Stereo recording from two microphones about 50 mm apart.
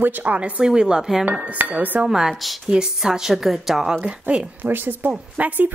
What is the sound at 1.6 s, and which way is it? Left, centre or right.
Dishes, right.